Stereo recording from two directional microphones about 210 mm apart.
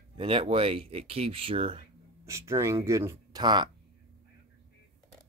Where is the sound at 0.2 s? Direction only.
25° right (ahead or behind).